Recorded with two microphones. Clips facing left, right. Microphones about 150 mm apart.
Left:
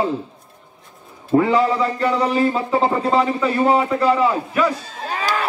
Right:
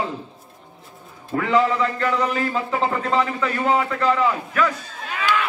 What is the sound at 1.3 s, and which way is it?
Speech, 30° left (ahead or behind).